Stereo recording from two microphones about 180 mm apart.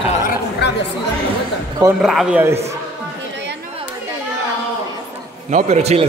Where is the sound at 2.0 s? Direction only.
Centre (ahead or behind).